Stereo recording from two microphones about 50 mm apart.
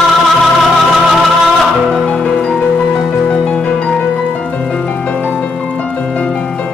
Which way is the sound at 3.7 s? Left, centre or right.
Centre.